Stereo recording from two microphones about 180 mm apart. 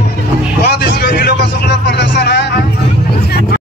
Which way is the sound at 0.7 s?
65° left (ahead or behind).